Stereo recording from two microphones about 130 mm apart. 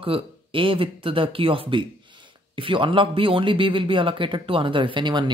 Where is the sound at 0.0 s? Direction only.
45° right (ahead or behind).